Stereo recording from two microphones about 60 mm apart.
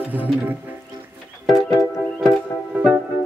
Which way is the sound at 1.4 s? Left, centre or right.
Centre.